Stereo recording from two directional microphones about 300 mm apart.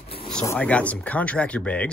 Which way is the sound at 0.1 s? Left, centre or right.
Centre.